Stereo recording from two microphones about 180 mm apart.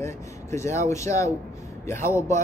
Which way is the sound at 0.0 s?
15° left (ahead or behind).